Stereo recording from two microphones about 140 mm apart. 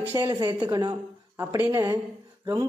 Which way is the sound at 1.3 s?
15° right (ahead or behind).